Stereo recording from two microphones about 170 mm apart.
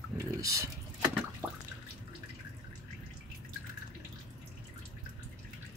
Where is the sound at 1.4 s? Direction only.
15° right (ahead or behind).